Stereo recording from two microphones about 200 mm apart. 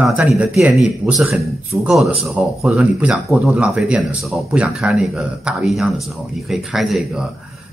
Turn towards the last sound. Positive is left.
turn(degrees=0)  # may be behind; listen again after turning